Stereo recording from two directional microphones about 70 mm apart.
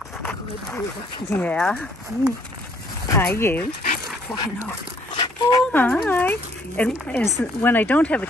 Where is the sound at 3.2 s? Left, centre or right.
Left.